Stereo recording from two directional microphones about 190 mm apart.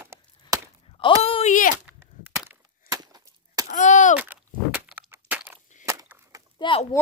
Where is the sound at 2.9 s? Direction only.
20° right (ahead or behind).